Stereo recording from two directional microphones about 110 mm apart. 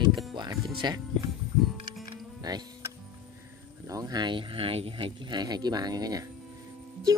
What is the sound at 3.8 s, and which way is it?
Speech, 35° right (ahead or behind).